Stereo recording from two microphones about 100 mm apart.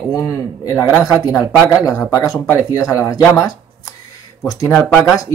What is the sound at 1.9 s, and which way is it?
Speech, 35° left (ahead or behind).